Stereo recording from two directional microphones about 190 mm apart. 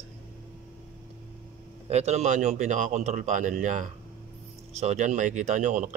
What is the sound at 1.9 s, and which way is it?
Speech, 35° right (ahead or behind).